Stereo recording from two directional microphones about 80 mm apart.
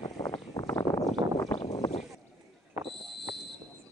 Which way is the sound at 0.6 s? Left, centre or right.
Left.